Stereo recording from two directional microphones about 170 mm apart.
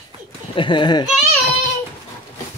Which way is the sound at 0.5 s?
25° left (ahead or behind).